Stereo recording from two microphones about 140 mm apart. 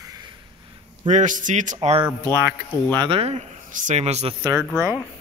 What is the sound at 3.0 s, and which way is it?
Speech, 40° right (ahead or behind).